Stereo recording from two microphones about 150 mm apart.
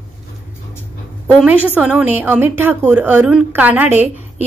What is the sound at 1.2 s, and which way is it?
A woman's voice, 10° right (ahead or behind).